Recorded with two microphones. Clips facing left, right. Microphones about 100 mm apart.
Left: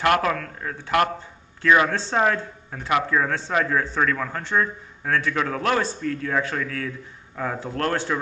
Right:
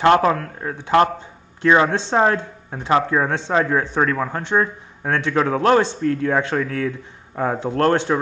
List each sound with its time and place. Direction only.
0.0 s speech: 30° right (ahead or behind)
0.7 s speech: 20° right (ahead or behind)
4.0 s speech: 30° right (ahead or behind)
4.4 s speech: 20° right (ahead or behind)
5.9 s speech: 40° right (ahead or behind)
7.5 s speech: 25° right (ahead or behind)